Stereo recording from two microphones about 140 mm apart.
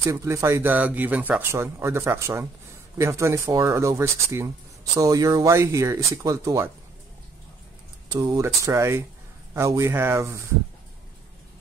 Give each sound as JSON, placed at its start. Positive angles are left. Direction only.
{"t": 0.0, "sound": "speech", "side_deg": -20}
{"t": 8.1, "sound": "speech", "side_deg": -30}